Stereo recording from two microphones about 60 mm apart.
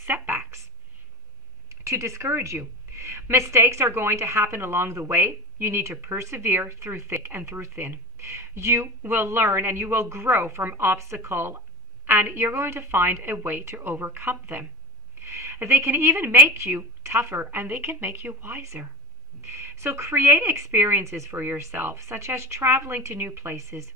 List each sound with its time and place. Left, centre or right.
0.0 s a sound: right
1.7 s a woman's voice: right
15.2 s a woman's voice: right
20.7 s a woman's voice: right
21.0 s a woman's voice: right
21.9 s a woman's voice: right
23.5 s speech: right